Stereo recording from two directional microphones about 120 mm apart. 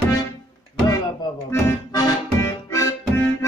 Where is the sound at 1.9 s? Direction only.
30° left (ahead or behind).